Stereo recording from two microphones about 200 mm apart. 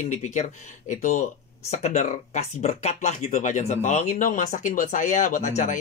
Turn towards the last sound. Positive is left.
turn(degrees=40)  # may be behind; listen again after turning